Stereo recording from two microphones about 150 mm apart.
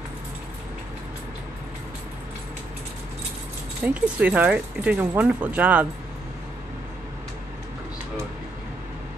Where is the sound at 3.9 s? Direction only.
10° right (ahead or behind).